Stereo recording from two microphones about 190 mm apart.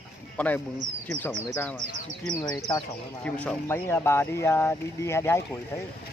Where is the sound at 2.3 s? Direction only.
20° left (ahead or behind).